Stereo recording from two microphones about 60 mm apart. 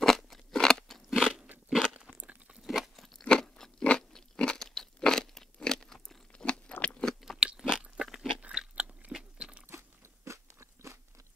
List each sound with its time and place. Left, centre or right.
0.0 s crunch: centre
1.7 s a sound: centre
2.0 s crunch: centre
2.6 s crunch: centre
3.2 s crunch: centre
6.8 s biting: centre
7.2 s crunch: centre
8.7 s biting: right
9.1 s a sound: centre
9.7 s crunch: right